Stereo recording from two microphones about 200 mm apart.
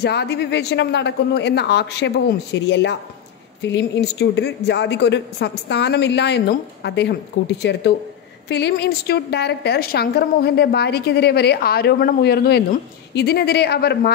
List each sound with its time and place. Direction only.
0.0 s a man's voice: 55° left (ahead or behind)